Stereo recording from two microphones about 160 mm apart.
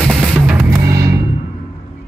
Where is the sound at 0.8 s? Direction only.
20° right (ahead or behind).